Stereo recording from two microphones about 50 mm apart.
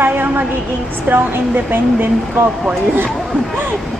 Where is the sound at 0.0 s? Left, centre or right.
Right.